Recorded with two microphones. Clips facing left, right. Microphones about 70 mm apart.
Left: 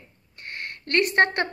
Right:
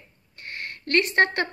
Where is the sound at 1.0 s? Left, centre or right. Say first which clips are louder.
Left 1 dB; left.